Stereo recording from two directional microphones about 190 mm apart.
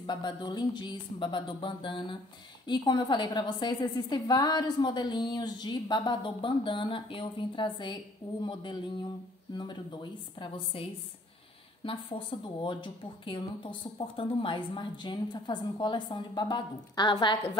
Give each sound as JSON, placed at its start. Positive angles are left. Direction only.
{"t": 0.0, "sound": "a woman's voice", "side_deg": 25}